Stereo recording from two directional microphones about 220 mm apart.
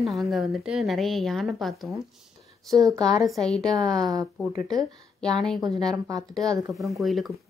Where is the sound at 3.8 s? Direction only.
15° right (ahead or behind).